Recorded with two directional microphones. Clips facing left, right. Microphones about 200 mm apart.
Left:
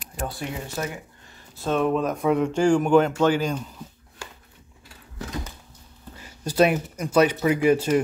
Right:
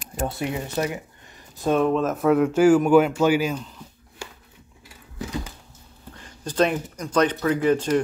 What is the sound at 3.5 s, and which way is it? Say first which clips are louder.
Speech: left 1 dB; 10° left (ahead or behind).